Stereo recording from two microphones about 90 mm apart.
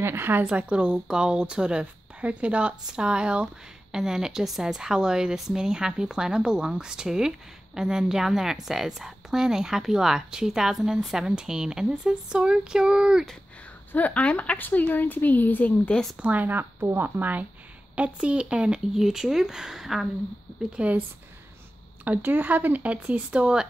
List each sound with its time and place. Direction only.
0.0 s a woman's voice: 25° right (ahead or behind)
0.5 s a woman's voice: 10° right (ahead or behind)
13.9 s speech: 15° left (ahead or behind)
15.9 s speech: 5° left (ahead or behind)
16.2 s a woman's voice: 20° right (ahead or behind)
20.7 s a woman's voice: 15° right (ahead or behind)
22.0 s a woman's voice: 20° right (ahead or behind)